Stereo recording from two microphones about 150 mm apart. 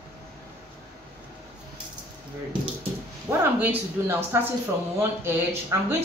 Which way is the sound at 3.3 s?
15° right (ahead or behind).